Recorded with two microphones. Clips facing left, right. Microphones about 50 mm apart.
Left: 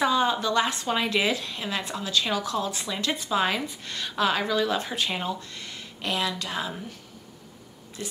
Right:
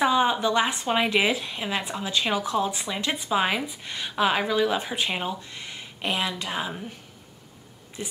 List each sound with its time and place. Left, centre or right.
0.0 s a woman's voice: centre
8.0 s a woman's voice: centre